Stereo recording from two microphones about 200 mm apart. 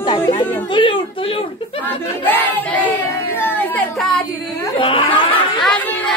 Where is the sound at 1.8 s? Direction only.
10° left (ahead or behind).